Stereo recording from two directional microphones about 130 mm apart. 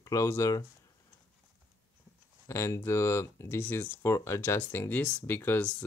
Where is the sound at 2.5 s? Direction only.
20° left (ahead or behind).